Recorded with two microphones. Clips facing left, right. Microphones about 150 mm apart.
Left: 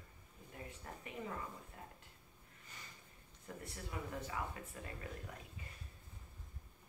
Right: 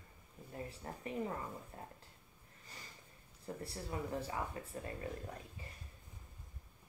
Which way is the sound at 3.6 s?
30° right (ahead or behind).